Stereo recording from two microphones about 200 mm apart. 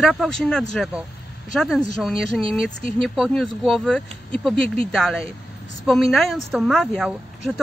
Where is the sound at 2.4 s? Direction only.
25° right (ahead or behind).